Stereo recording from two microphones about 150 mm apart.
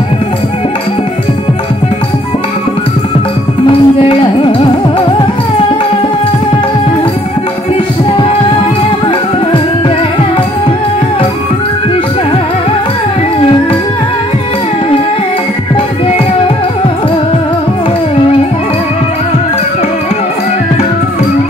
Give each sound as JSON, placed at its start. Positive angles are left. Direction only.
{"t": 3.6, "sound": "music", "side_deg": 35}